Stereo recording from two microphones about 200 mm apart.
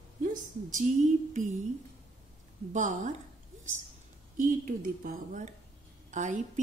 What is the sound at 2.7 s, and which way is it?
Speech, 40° right (ahead or behind).